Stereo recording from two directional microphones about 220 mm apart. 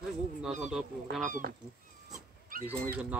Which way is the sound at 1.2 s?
35° right (ahead or behind).